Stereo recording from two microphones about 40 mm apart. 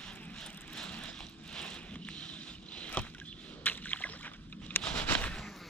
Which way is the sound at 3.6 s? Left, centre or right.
Left.